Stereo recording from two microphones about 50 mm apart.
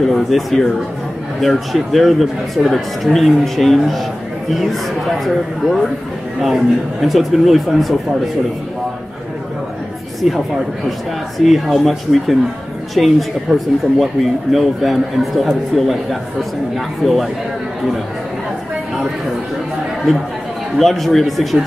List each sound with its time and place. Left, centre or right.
0.1 s speech: centre
5.2 s speech: centre
10.2 s speech: centre
16.7 s speech: centre
20.7 s speech: centre